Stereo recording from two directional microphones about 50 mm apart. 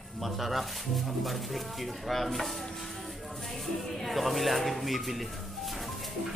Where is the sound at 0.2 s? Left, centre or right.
Centre.